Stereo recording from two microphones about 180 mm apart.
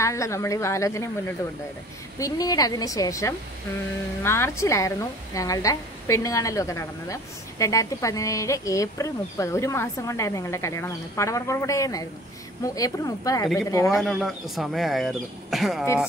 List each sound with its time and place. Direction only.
0.0 s a woman's voice: 15° left (ahead or behind)
2.1 s a woman's voice: 20° left (ahead or behind)
14.0 s speech: centre (ahead or behind)